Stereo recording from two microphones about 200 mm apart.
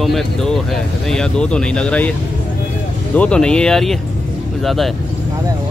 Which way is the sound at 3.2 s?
5° left (ahead or behind).